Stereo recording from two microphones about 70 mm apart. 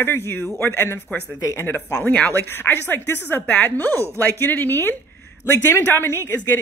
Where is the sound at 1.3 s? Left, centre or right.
Left.